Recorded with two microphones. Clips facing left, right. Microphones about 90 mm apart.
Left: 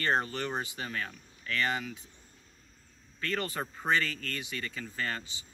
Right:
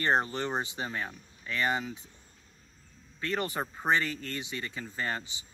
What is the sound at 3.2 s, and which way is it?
Speech, 20° right (ahead or behind).